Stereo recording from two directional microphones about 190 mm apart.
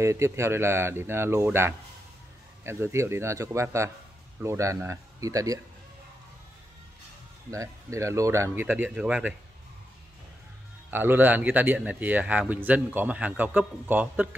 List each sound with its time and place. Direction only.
0.0 s speech: 15° right (ahead or behind)
7.5 s speech: 15° right (ahead or behind)
10.9 s speech: 10° right (ahead or behind)